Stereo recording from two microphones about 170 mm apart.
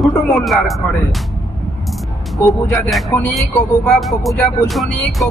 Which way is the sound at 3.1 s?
15° left (ahead or behind).